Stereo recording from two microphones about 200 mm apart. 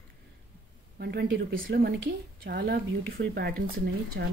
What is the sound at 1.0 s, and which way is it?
A woman's voice, 55° right (ahead or behind).